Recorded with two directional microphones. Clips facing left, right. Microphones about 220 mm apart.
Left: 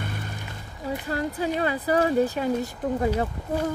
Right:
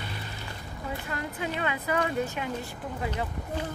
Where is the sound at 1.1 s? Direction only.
35° left (ahead or behind).